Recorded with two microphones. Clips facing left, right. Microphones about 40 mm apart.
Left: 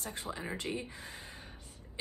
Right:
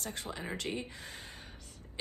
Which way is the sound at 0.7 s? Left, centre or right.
Right.